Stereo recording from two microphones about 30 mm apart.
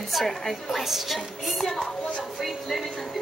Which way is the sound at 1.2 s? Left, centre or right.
Centre.